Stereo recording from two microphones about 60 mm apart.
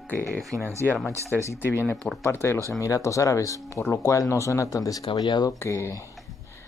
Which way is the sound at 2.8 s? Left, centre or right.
Left.